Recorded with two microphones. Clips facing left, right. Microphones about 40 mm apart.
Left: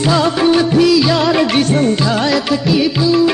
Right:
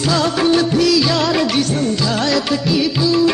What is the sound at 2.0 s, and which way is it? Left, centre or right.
Music, centre.